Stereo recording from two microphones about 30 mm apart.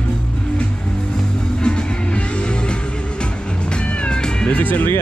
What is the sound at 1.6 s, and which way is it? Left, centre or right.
Music, left.